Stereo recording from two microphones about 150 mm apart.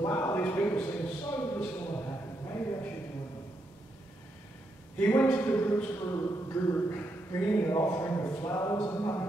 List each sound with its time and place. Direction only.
0.0 s a man's voice: 15° left (ahead or behind)
4.9 s a man's voice: 15° left (ahead or behind)